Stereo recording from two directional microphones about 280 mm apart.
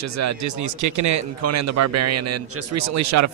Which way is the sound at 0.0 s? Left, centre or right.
Right.